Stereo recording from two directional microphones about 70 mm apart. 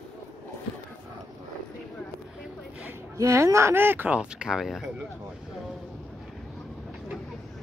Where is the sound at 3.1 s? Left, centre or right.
Right.